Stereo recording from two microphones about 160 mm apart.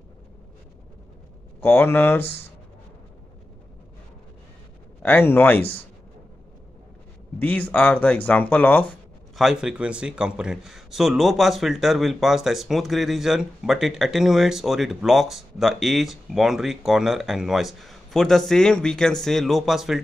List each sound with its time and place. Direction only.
1.6 s speech: 15° left (ahead or behind)
5.0 s speech: 10° left (ahead or behind)
7.3 s speech: 10° left (ahead or behind)
9.4 s a man's voice: 5° right (ahead or behind)